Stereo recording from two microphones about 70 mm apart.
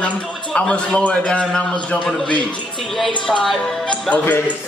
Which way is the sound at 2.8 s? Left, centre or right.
Centre.